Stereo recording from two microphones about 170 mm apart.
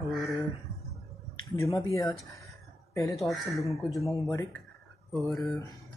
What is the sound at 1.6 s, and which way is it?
Speech, 20° left (ahead or behind).